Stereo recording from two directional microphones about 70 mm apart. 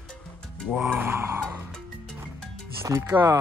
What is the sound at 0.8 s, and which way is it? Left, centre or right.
Speech, right.